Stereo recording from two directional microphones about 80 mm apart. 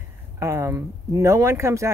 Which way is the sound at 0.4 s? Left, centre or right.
Right.